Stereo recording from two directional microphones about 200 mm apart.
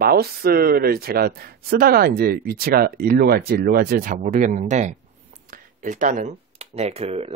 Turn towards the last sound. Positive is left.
turn(degrees=-30)  # may be behind; listen again after turning